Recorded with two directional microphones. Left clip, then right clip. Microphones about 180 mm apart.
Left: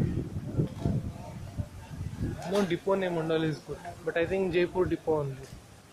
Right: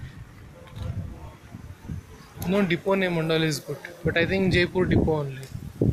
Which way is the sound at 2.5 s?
15° right (ahead or behind).